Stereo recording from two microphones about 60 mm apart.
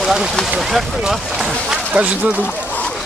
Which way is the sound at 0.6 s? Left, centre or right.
Centre.